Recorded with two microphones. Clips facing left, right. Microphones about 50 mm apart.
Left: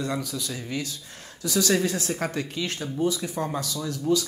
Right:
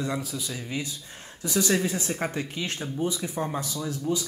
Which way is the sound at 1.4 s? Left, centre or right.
Right.